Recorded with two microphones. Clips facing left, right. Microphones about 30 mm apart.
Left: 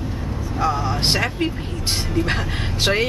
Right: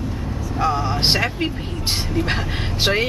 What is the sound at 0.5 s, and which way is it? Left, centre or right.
Speech, centre.